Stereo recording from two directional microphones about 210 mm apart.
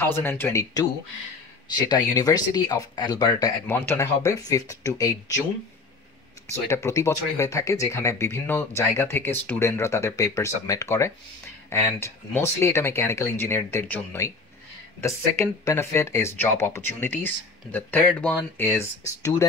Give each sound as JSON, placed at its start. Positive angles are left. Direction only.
{"t": 0.0, "sound": "speech", "side_deg": 10}
{"t": 6.5, "sound": "speech", "side_deg": 15}